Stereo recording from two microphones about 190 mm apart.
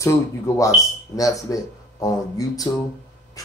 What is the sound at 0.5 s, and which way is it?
Speech, 15° left (ahead or behind).